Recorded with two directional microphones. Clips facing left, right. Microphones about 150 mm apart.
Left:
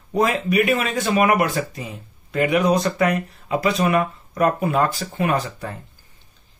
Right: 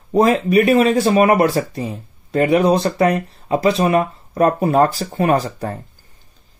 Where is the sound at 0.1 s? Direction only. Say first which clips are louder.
Right 6 dB; 35° right (ahead or behind).